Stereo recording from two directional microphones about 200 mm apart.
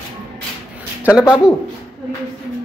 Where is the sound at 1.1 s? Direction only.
15° left (ahead or behind).